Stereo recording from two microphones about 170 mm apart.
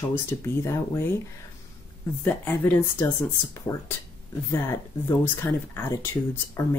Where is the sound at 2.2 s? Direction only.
10° left (ahead or behind).